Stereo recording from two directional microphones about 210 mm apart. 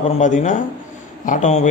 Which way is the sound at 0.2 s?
35° left (ahead or behind).